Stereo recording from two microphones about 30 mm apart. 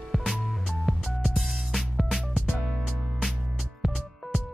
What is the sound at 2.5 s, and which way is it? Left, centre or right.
Music, centre.